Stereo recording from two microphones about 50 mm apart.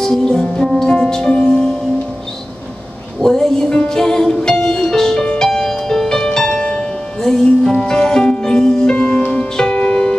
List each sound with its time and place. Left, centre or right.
0.0 s music: centre
3.2 s music: centre